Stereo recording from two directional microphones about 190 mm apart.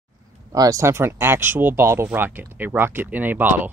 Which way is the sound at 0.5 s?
20° right (ahead or behind).